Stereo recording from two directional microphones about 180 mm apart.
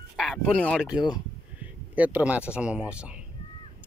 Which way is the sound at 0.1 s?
Centre (ahead or behind).